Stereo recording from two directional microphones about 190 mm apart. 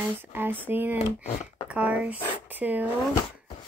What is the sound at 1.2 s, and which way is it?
Speech, 40° left (ahead or behind).